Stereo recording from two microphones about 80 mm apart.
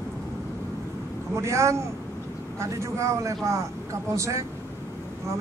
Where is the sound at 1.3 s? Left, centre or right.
Right.